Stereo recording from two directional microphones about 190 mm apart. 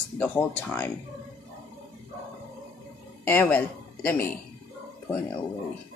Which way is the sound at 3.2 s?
10° left (ahead or behind).